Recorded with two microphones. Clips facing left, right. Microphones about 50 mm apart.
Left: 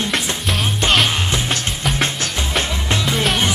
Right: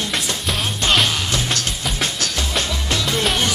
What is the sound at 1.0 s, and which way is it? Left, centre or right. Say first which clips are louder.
Music: left 2 dB; left.